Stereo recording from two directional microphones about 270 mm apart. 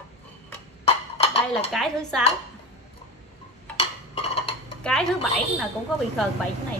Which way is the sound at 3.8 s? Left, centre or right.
Left.